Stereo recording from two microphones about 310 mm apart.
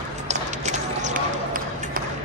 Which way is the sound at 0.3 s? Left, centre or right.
Right.